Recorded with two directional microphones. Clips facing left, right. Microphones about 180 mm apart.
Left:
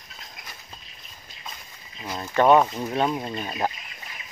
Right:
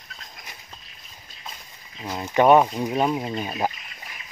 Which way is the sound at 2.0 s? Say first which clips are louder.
Right 2 dB; 15° right (ahead or behind).